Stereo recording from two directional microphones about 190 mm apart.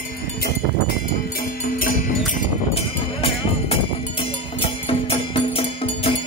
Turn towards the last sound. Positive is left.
turn(degrees=30)  # may be behind; listen again after turning